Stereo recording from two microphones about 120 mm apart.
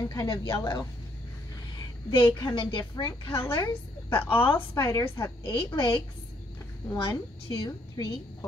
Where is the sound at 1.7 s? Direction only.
45° left (ahead or behind).